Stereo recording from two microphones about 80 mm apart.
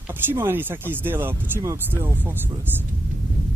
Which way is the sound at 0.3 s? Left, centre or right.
Right.